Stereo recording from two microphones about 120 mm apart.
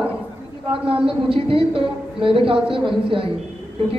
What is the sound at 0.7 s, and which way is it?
Speech, 50° right (ahead or behind).